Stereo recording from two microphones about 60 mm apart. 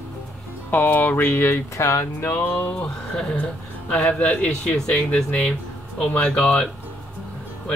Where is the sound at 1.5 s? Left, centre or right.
Left.